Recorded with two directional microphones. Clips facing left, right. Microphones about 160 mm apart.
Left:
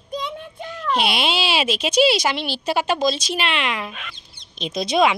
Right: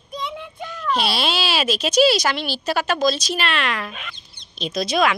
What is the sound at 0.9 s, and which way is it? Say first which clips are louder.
A woman's voice: left 1 dB; 20° left (ahead or behind).